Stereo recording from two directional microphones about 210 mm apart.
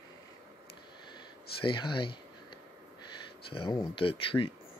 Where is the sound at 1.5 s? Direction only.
25° left (ahead or behind).